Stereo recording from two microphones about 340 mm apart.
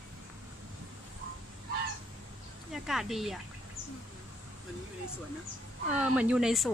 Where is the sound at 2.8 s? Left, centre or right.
Centre.